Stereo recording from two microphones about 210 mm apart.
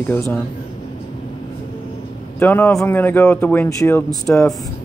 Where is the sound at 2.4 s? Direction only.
10° left (ahead or behind).